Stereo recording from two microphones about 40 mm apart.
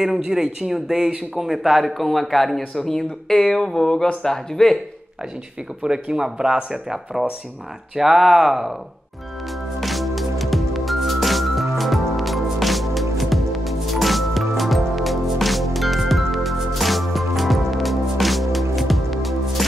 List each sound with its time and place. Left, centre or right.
0.2 s a man's voice: centre
5.8 s speech: right; by 8.7 s centre
9.8 s music: centre